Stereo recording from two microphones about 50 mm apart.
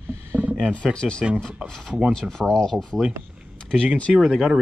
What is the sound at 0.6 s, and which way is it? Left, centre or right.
Speech, centre.